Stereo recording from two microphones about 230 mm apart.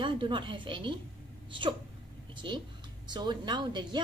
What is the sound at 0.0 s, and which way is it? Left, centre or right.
A woman's voice, right.